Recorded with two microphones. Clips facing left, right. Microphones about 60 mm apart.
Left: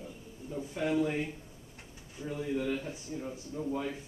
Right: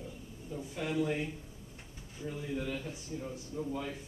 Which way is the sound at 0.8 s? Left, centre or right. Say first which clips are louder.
Left 3 dB; left.